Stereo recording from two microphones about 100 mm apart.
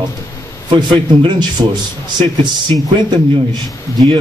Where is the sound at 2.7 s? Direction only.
20° left (ahead or behind).